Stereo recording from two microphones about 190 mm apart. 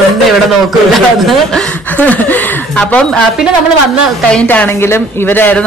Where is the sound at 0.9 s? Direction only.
Centre (ahead or behind).